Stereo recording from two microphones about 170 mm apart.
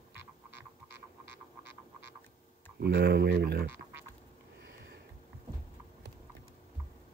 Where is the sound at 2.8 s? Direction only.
75° right (ahead or behind).